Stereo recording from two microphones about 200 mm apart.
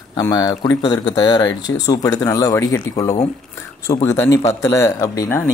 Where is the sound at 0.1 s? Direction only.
20° left (ahead or behind).